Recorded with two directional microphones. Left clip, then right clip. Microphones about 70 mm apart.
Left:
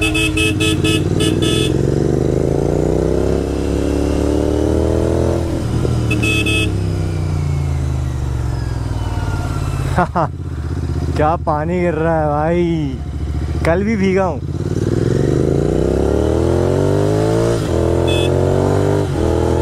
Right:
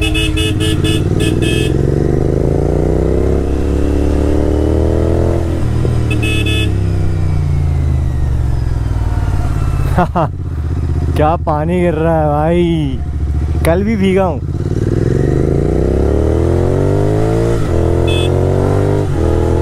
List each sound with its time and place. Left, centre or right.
0.0 s vehicle: left
9.9 s vehicle: centre
11.1 s speech: centre
11.6 s a sound: right
13.7 s speech: centre
14.0 s a sound: right
15.0 s vehicle: left